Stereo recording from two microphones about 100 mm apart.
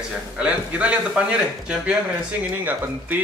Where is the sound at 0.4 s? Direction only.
10° right (ahead or behind).